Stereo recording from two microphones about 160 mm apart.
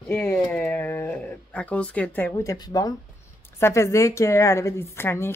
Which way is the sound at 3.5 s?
15° left (ahead or behind).